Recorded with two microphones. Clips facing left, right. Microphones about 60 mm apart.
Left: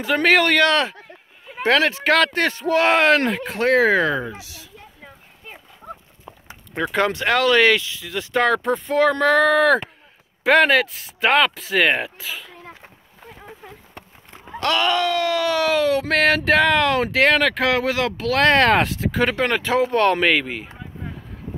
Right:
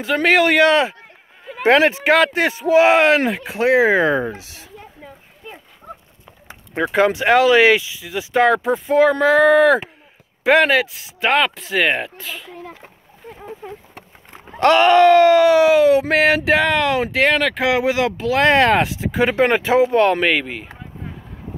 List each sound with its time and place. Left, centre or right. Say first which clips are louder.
0.0 s speech: right 2 dB; centre
4.3 s speech: right 4 dB; right
5.8 s a sound: left 1 dB; centre
6.7 s speech: right 4 dB; centre
14.6 s speech: right 9 dB; right; by 20.7 s centre